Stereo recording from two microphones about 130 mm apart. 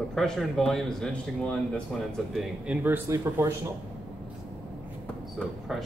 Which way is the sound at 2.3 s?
Centre (ahead or behind).